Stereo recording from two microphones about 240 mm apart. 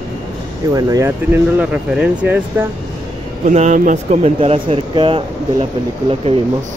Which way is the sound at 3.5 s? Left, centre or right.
Right.